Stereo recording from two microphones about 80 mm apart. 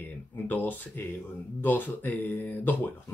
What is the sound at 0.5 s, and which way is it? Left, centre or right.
Speech, left.